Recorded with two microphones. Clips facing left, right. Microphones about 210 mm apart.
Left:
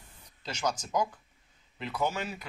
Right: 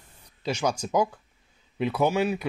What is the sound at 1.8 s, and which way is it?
Speech, 75° right (ahead or behind).